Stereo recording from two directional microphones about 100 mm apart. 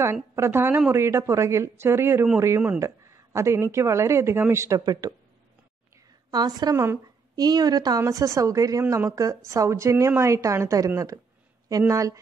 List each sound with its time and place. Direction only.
0.0 s speech: 25° right (ahead or behind)
6.3 s a woman's voice: 40° right (ahead or behind)
11.9 s a woman's voice: 35° right (ahead or behind)